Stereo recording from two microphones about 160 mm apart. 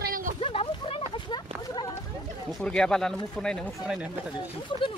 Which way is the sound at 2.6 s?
5° left (ahead or behind).